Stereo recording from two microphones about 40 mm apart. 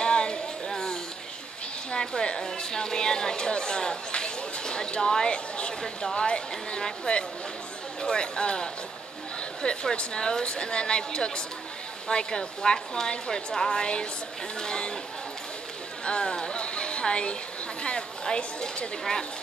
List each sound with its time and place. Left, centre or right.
0.0 s a sound: left
1.9 s speech: left
16.1 s speech: left